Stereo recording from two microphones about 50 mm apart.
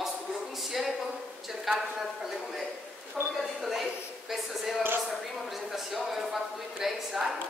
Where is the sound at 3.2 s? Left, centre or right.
Right.